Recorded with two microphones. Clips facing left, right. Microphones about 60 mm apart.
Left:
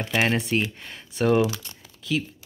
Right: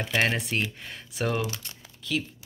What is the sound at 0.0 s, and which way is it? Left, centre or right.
Speech, centre.